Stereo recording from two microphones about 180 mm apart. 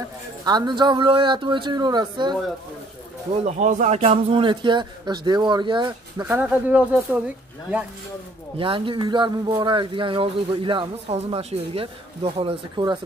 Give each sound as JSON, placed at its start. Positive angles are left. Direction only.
{"t": 0.5, "sound": "speech", "side_deg": -25}
{"t": 3.4, "sound": "speech", "side_deg": -45}
{"t": 6.2, "sound": "speech", "side_deg": -10}
{"t": 8.5, "sound": "speech", "side_deg": -30}